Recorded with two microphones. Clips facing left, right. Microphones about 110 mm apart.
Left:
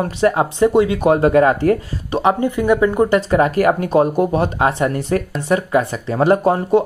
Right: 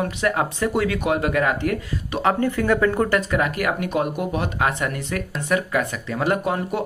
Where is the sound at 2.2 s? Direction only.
20° left (ahead or behind).